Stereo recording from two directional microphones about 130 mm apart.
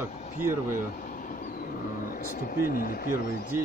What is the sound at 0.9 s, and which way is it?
Vehicle, 90° left.